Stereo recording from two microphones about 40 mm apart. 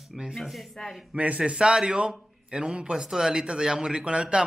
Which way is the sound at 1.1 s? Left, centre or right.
Right.